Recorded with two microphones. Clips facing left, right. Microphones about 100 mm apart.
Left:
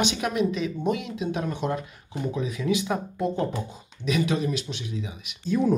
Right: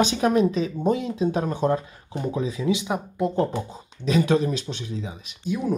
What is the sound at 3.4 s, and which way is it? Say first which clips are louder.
Speech: right 4 dB; 35° right (ahead or behind).